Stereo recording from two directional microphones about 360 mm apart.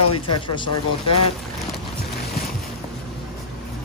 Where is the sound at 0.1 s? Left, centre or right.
Centre.